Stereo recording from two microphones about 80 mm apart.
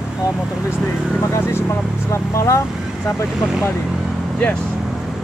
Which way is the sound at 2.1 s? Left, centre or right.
Left.